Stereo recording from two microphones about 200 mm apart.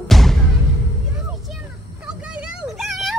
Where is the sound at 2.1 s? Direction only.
5° right (ahead or behind).